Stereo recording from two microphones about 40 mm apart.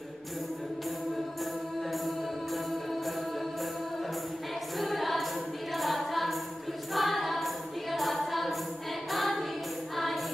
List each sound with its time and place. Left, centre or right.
4.7 s choir: centre
5.8 s a capella: centre
6.9 s choir: centre